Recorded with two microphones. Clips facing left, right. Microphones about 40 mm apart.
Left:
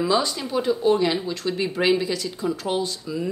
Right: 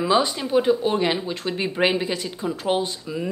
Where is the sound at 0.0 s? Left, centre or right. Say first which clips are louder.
Right 2 dB; right.